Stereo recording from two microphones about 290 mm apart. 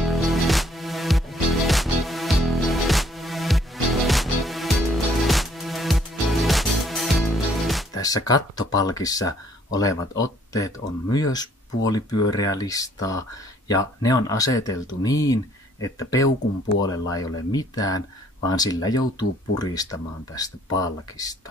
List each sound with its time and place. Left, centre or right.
0.0 s music: centre
7.9 s speech: centre